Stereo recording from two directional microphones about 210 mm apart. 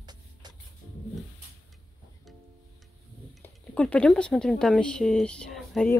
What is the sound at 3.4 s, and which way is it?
Speech, 5° left (ahead or behind).